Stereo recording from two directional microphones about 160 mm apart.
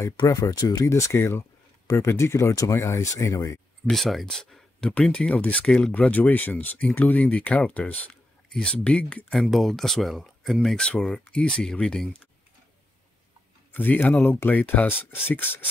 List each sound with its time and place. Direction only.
0.0 s speech: 25° left (ahead or behind)
3.8 s speech: centre (ahead or behind)
13.7 s a sound: 10° left (ahead or behind)
13.9 s speech: 5° left (ahead or behind)